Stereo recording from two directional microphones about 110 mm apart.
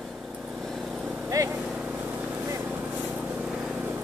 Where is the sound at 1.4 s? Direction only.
30° right (ahead or behind).